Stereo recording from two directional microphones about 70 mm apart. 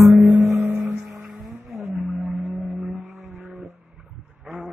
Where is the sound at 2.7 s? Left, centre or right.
Right.